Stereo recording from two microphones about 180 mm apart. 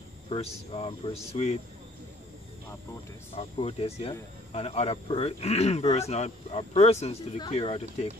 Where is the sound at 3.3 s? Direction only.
30° left (ahead or behind).